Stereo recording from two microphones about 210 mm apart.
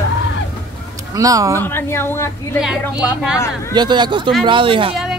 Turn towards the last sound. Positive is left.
turn(degrees=-25)  # may be behind; listen again after turning